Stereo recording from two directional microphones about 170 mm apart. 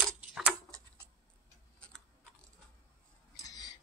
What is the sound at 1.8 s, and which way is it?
Typing, 5° left (ahead or behind).